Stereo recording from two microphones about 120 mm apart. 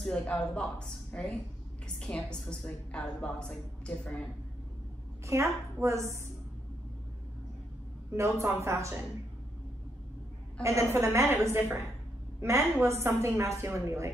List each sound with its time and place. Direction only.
0.0 s a woman's voice: 5° left (ahead or behind)
5.2 s a woman's voice: 25° right (ahead or behind)
8.1 s a woman's voice: 25° right (ahead or behind)
10.6 s a woman's voice: 25° right (ahead or behind)